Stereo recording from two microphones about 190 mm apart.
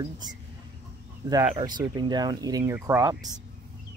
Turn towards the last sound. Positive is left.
turn(degrees=-15)  # may be behind; listen again after turning